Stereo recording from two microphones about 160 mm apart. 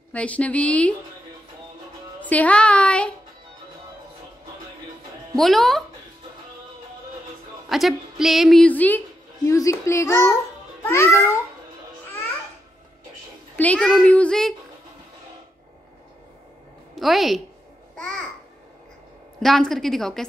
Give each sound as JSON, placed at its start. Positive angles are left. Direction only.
{"t": 0.1, "sound": "speech", "side_deg": 5}
{"t": 2.2, "sound": "speech", "side_deg": 10}
{"t": 5.3, "sound": "a woman's voice", "side_deg": 0}
{"t": 7.7, "sound": "a woman's voice", "side_deg": 0}
{"t": 13.6, "sound": "speech", "side_deg": 10}
{"t": 16.9, "sound": "a woman's voice", "side_deg": 0}
{"t": 17.9, "sound": "babbling", "side_deg": 5}
{"t": 19.4, "sound": "a woman's voice", "side_deg": 0}